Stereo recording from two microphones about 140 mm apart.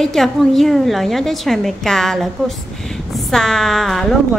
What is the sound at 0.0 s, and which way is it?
A woman's voice, centre (ahead or behind).